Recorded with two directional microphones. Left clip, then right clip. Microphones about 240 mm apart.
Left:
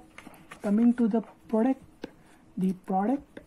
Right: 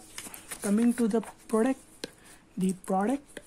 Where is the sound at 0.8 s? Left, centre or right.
Centre.